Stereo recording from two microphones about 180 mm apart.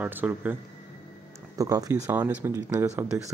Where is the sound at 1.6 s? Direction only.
20° right (ahead or behind).